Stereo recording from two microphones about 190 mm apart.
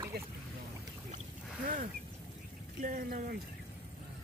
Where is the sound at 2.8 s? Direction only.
45° right (ahead or behind).